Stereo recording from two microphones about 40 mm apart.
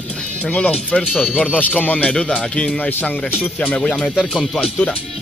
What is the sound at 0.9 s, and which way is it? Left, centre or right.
Speech, left.